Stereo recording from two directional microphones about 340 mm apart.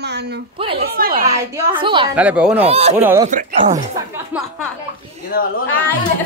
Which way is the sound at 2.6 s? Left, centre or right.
Centre.